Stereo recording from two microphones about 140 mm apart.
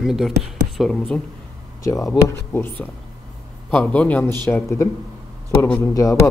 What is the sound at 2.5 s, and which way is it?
A man's voice, 15° left (ahead or behind).